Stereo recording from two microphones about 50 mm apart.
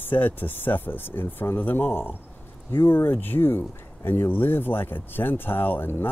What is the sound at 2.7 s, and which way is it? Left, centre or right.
Speech, left.